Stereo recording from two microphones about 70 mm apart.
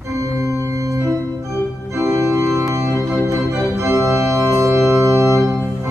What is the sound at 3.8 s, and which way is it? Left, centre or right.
Organ, right.